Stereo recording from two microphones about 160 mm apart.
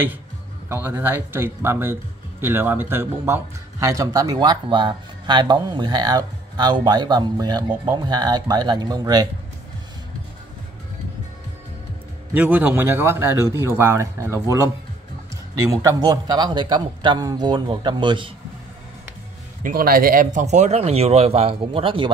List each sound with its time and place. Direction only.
0.7 s speech: 15° right (ahead or behind)
12.4 s speech: 10° right (ahead or behind)
15.7 s speech: 20° right (ahead or behind)
19.6 s speech: 65° right (ahead or behind); by 22.1 s 35° right (ahead or behind)